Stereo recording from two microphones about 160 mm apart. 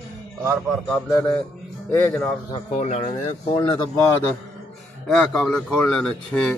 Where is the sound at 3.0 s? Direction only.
30° left (ahead or behind).